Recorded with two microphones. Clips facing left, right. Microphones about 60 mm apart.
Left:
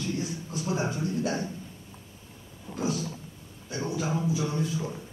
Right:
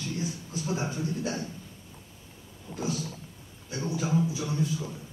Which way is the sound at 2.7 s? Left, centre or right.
Centre.